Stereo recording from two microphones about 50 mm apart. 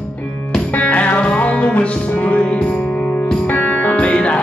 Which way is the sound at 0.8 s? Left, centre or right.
Left.